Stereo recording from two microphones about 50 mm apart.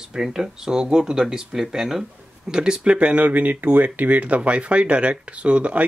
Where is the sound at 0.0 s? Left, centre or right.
Centre.